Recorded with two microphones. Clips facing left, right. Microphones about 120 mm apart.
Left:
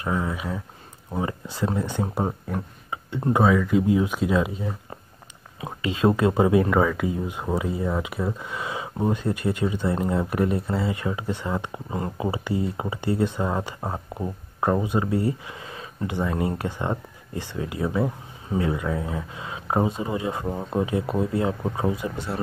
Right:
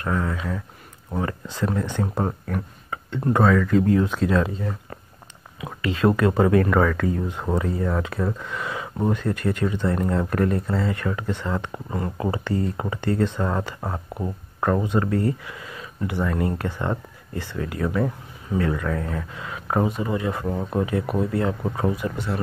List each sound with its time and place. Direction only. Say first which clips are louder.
0.0 s speech: right 1 dB; 15° left (ahead or behind)
5.8 s speech: right 1 dB; 20° left (ahead or behind)
15.5 s a sound: even; 30° left (ahead or behind)
16.1 s speech: right 1 dB; 20° left (ahead or behind)